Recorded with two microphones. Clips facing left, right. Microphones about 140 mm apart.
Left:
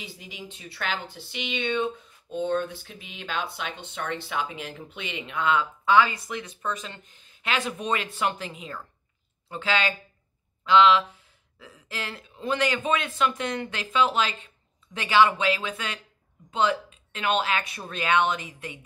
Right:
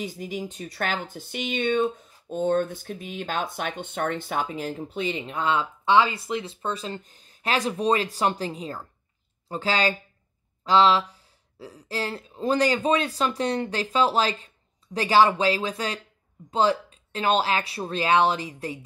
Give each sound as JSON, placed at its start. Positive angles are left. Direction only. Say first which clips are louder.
{"t": 0.0, "sound": "speech", "louder": "right 10 dB", "side_deg": -45}